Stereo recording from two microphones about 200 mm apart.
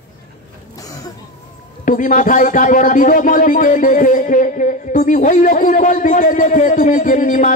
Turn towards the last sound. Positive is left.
turn(degrees=40)  # may be behind; listen again after turning